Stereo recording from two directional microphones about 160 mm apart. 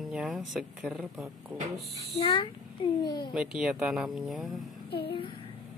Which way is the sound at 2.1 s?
35° left (ahead or behind).